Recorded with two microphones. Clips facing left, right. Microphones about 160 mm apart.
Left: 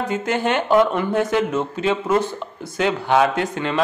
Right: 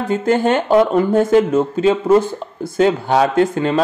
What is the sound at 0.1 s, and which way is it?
Speech, 40° right (ahead or behind).